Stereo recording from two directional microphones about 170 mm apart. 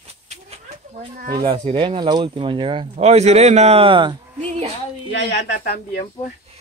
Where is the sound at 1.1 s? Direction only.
60° right (ahead or behind).